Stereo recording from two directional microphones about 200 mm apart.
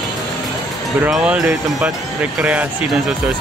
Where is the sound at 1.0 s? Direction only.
5° right (ahead or behind).